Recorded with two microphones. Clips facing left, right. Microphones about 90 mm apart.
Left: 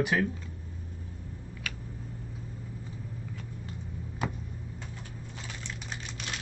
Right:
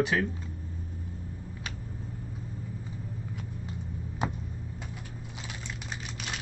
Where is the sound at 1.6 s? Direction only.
25° right (ahead or behind).